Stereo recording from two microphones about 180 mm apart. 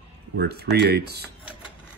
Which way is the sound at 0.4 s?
65° right (ahead or behind).